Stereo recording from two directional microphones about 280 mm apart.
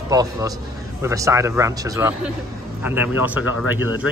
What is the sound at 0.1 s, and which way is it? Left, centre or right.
A man's voice, centre.